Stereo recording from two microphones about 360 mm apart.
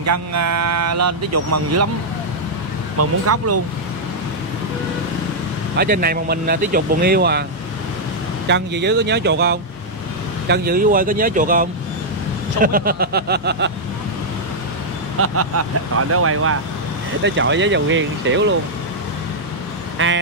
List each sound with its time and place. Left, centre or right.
0.0 s speech: right
3.0 s speech: right
5.8 s speech: right
8.5 s speech: right
15.1 s speech: right
20.0 s speech: right